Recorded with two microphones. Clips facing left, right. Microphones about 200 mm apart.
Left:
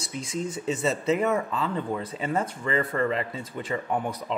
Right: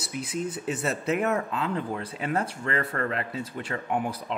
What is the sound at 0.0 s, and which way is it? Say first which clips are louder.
Speech: even; 5° right (ahead or behind).